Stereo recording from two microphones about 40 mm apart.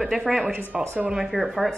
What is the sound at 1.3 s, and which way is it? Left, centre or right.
Speech, centre.